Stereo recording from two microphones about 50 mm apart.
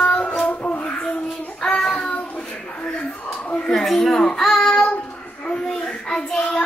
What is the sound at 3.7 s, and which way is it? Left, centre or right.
Speech, centre.